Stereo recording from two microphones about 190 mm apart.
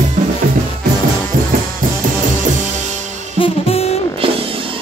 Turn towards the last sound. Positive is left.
turn(degrees=30)  # may be behind; listen again after turning